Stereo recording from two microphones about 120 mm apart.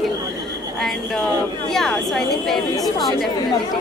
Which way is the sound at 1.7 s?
5° left (ahead or behind).